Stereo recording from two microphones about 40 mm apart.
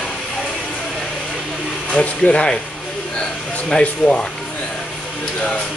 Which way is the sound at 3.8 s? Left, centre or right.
Left.